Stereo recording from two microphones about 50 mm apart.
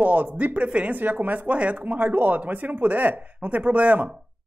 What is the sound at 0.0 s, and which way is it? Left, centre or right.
Speech, right.